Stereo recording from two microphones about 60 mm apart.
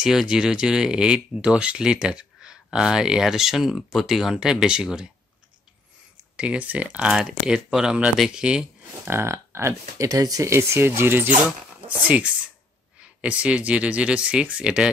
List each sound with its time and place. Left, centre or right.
0.0 s speech: centre
6.3 s speech: right
7.1 s speech: centre
9.0 s speech: right
10.0 s speech: right
10.5 s speech: right
11.3 s speech: right